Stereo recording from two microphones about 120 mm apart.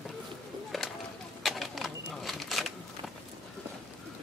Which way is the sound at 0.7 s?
Centre (ahead or behind).